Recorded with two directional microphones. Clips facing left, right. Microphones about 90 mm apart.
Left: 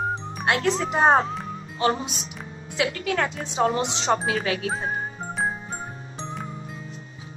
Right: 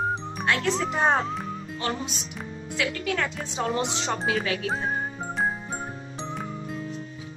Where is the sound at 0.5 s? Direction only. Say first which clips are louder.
Left 3 dB; 20° left (ahead or behind).